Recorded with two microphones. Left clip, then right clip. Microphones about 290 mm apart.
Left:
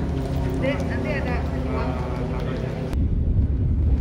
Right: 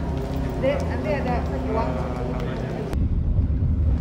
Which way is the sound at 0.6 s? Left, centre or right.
Right.